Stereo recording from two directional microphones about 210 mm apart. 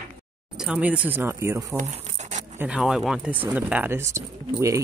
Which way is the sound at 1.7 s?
30° right (ahead or behind).